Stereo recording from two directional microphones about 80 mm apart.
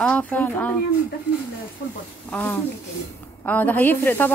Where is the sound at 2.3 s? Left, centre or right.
Left.